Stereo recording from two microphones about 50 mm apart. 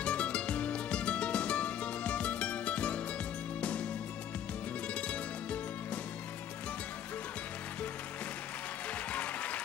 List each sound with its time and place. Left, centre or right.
0.0 s music: left
4.9 s music: left
9.1 s applause: left